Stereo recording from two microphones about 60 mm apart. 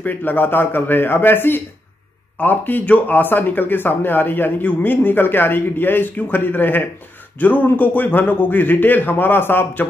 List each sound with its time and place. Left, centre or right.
0.0 s speech: left